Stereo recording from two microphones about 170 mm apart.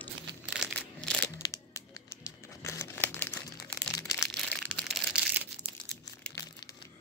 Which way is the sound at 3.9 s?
20° left (ahead or behind).